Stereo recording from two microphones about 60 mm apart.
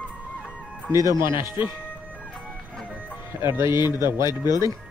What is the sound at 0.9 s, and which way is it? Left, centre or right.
Speech, right.